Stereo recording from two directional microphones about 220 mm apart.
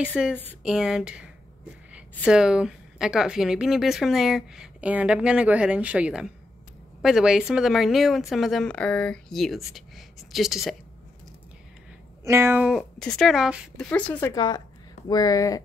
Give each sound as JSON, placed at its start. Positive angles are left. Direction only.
{"t": 0.2, "sound": "a woman's voice", "side_deg": 0}
{"t": 12.3, "sound": "a woman's voice", "side_deg": -10}
{"t": 14.3, "sound": "a woman's voice", "side_deg": 20}